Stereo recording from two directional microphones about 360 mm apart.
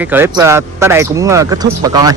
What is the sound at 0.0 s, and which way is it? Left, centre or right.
Speech, centre.